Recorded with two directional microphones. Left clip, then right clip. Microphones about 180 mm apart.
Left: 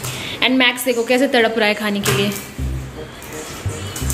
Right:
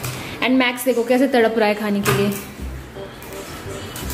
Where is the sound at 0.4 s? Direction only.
5° right (ahead or behind).